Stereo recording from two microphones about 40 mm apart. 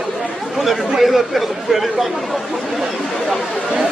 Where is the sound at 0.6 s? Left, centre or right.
Centre.